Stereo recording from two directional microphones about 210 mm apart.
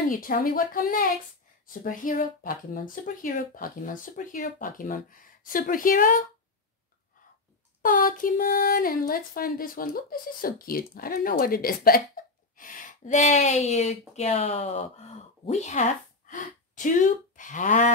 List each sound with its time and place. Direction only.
0.1 s speech: 40° left (ahead or behind)
7.8 s speech: 40° left (ahead or behind)